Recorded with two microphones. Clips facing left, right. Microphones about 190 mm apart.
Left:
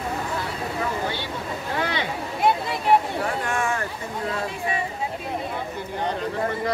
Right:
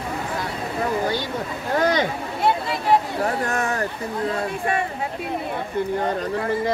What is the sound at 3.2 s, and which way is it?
Speech, 40° right (ahead or behind).